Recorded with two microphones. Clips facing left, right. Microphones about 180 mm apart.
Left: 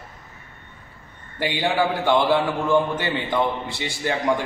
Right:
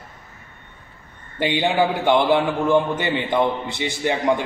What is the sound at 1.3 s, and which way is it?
A man's voice, 20° right (ahead or behind).